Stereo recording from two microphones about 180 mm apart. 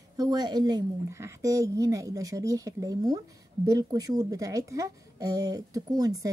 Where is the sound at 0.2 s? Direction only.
20° right (ahead or behind).